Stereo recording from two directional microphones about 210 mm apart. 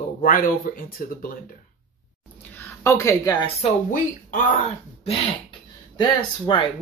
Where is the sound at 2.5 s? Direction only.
10° left (ahead or behind).